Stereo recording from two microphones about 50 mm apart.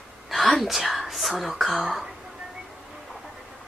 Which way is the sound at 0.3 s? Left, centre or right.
Centre.